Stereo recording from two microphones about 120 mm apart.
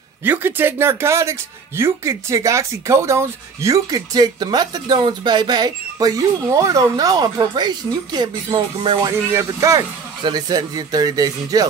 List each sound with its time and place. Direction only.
0.2 s speech: 15° right (ahead or behind); by 9.0 s 40° right (ahead or behind)
9.0 s speech: 20° right (ahead or behind)